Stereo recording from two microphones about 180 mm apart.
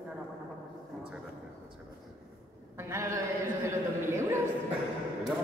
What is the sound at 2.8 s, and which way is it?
A woman's voice, 15° right (ahead or behind).